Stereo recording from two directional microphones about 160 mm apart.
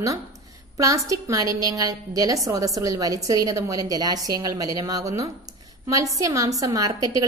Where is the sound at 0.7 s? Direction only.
20° right (ahead or behind).